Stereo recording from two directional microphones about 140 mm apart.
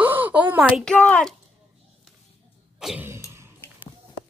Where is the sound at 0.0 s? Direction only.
10° right (ahead or behind).